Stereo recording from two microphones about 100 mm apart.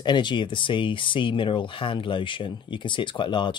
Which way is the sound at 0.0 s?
50° left (ahead or behind).